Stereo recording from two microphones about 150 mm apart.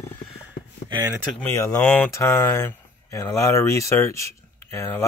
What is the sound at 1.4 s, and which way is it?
Speech, 15° left (ahead or behind).